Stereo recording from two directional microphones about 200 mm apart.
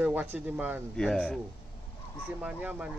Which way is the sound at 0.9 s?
5° left (ahead or behind).